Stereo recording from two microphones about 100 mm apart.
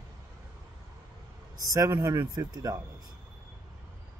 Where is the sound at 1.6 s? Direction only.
35° right (ahead or behind).